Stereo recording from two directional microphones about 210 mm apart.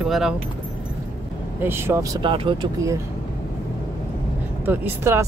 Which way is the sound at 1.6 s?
10° right (ahead or behind).